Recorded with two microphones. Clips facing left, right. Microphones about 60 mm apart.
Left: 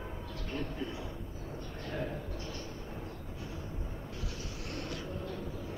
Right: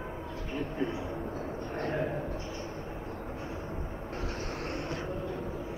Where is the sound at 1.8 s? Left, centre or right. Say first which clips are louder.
Right 6 dB; right.